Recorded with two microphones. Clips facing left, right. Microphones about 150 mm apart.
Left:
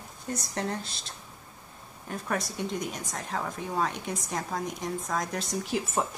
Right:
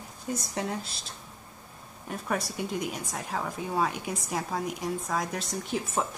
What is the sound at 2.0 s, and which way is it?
Speech, 5° right (ahead or behind).